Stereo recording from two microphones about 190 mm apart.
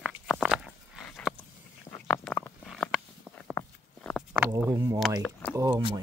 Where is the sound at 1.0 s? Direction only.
5° left (ahead or behind).